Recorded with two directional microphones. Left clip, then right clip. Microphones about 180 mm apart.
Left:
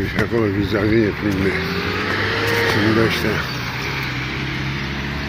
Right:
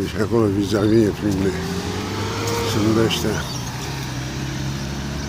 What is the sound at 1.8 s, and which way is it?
Vehicle, 65° right (ahead or behind).